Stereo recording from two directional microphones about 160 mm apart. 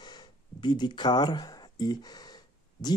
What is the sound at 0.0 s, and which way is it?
Speech, 30° left (ahead or behind).